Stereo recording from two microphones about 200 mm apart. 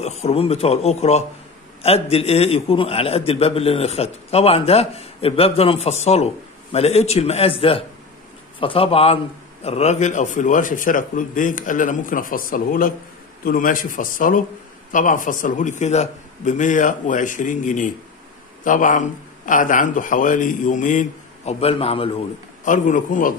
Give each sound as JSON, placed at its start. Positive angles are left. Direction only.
{"t": 0.0, "sound": "a man's voice", "side_deg": 35}
{"t": 22.7, "sound": "a man's voice", "side_deg": 40}